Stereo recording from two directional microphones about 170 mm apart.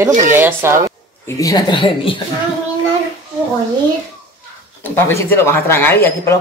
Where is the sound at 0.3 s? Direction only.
10° right (ahead or behind).